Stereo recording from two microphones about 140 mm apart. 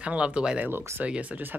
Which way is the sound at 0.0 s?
10° right (ahead or behind).